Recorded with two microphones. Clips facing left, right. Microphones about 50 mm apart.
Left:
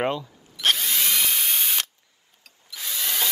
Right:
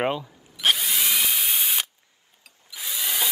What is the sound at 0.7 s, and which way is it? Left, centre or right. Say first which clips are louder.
Drill: even; centre.